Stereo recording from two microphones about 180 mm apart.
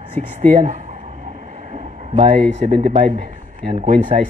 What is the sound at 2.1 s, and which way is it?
Speech, 35° right (ahead or behind).